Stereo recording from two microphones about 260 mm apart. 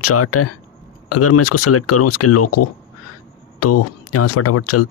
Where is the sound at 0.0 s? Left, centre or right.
Left.